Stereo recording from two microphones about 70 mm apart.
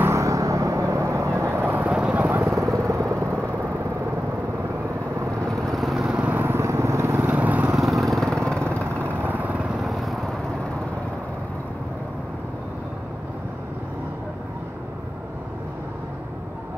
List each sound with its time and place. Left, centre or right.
0.0 s vehicle: right
1.9 s vehicle: centre
2.3 s vehicle: right
5.4 s vehicle: centre
6.0 s vehicle: right
6.4 s vehicle: right
7.2 s lawn mower: right
7.7 s vehicle: centre
8.5 s lawn mower: centre
9.0 s vehicle: right
9.7 s vehicle: centre